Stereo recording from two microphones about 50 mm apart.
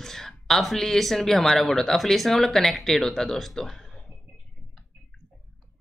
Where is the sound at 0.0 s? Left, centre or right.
Centre.